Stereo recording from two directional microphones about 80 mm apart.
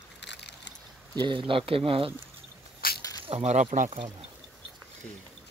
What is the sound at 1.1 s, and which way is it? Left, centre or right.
Speech, right.